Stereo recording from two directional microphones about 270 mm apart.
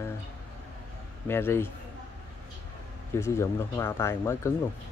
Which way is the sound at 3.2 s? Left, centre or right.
Centre.